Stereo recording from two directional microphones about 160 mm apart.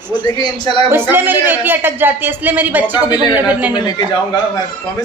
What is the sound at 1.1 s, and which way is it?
A man's voice, 15° right (ahead or behind).